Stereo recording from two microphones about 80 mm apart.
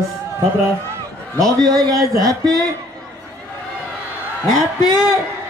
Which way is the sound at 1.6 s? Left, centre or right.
Right.